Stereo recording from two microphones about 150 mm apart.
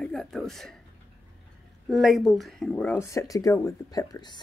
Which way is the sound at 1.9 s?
Centre (ahead or behind).